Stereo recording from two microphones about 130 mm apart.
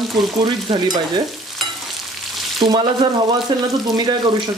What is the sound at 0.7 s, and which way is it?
Speech, 35° right (ahead or behind).